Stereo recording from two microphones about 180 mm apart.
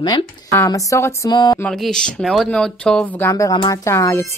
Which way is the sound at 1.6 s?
5° left (ahead or behind).